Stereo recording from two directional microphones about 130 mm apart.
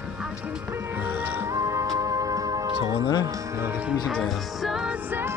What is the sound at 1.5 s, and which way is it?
Music, 25° right (ahead or behind).